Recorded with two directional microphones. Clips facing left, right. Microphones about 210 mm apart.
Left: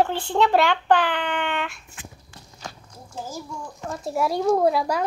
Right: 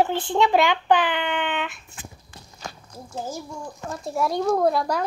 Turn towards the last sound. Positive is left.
turn(degrees=5)  # may be behind; listen again after turning